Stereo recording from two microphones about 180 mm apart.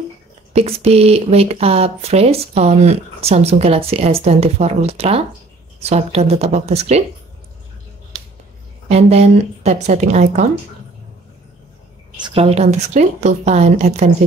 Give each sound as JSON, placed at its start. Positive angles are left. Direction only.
{"t": 0.5, "sound": "speech", "side_deg": -35}
{"t": 8.8, "sound": "speech", "side_deg": -35}
{"t": 12.2, "sound": "speech", "side_deg": -30}